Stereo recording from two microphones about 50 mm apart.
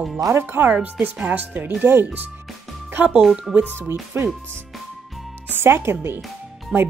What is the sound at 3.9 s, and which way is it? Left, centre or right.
Speech, right.